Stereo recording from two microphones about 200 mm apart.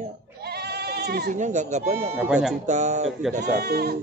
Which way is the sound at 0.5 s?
55° right (ahead or behind).